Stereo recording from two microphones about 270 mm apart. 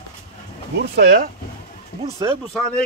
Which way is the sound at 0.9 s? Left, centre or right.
Right.